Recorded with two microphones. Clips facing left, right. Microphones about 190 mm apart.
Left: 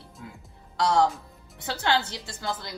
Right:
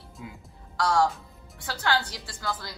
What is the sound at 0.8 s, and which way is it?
Speech, 20° left (ahead or behind).